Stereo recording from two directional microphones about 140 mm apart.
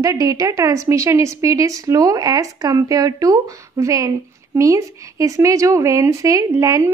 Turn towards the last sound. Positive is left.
turn(degrees=-20)  # may be behind; listen again after turning